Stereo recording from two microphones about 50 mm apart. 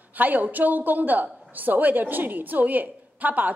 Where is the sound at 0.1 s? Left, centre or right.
Right.